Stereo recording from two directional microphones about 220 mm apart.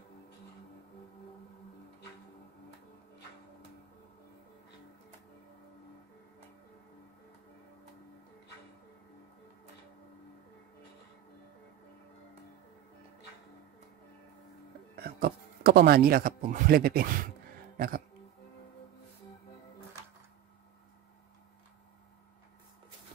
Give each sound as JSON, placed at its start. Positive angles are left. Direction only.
{"t": 15.0, "sound": "speech", "side_deg": -45}